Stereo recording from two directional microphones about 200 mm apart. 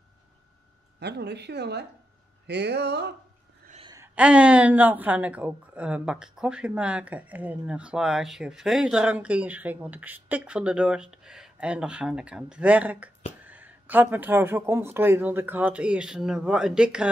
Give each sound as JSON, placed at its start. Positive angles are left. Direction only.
{"t": 0.9, "sound": "a woman's voice", "side_deg": -55}
{"t": 3.8, "sound": "a sound", "side_deg": -15}
{"t": 4.1, "sound": "a woman's voice", "side_deg": -5}